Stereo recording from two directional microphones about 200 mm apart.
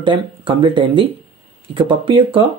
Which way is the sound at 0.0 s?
25° right (ahead or behind).